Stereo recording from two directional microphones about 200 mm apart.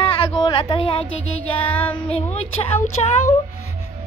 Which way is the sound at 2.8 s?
35° left (ahead or behind).